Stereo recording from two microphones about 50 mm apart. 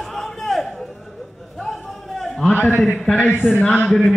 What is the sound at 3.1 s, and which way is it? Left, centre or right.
Speech, left.